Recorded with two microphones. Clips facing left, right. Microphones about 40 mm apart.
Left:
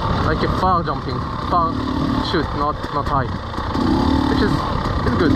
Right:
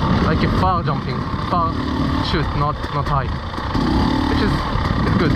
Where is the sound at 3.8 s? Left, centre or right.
Right.